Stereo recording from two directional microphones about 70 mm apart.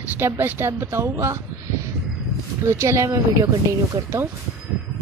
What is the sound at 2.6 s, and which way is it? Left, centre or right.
Speech, right.